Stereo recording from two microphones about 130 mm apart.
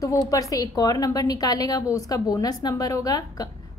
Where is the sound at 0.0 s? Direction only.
25° left (ahead or behind).